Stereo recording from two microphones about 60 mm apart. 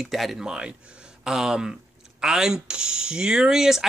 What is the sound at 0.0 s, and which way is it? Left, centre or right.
Speech, centre.